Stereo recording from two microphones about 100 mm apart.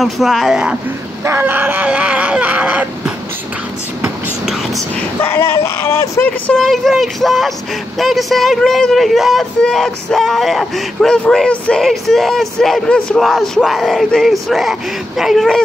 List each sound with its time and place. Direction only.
0.0 s a man's voice: centre (ahead or behind)
1.2 s screaming: 20° right (ahead or behind)
5.2 s speech: 25° left (ahead or behind)
6.6 s a man's voice: centre (ahead or behind)